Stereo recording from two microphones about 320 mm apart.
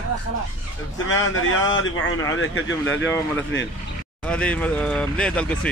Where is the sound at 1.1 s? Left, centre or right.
Left.